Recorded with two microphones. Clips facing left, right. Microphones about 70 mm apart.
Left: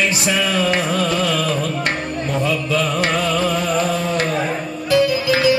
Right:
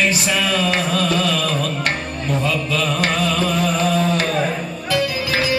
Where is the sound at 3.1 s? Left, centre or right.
Left.